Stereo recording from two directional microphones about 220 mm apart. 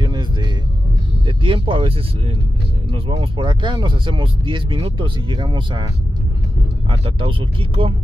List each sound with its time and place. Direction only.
0.0 s vehicle: 20° right (ahead or behind)
1.2 s music: 25° right (ahead or behind)
2.9 s speech: 25° right (ahead or behind)
6.9 s speech: 25° right (ahead or behind)